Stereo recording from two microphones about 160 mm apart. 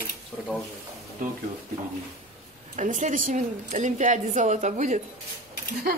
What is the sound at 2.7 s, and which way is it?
A woman's voice, 50° right (ahead or behind).